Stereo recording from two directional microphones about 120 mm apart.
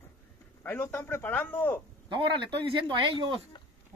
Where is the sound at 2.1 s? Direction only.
40° right (ahead or behind).